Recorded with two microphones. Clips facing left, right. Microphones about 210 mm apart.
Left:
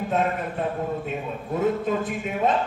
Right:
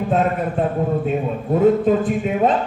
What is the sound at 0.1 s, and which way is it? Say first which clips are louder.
A man's voice: right 6 dB; 45° right (ahead or behind).